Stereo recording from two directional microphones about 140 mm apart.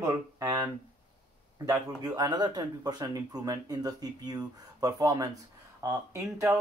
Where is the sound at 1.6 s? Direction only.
25° right (ahead or behind).